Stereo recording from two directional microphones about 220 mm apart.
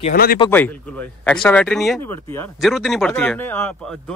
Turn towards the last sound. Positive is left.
turn(degrees=10)  # may be behind; listen again after turning